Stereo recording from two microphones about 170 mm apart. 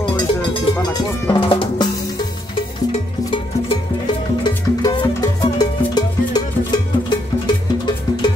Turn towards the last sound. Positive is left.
turn(degrees=25)  # may be behind; listen again after turning